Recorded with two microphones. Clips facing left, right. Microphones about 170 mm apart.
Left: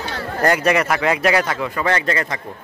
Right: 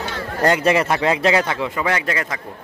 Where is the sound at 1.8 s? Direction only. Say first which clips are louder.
Left 4 dB; 10° right (ahead or behind).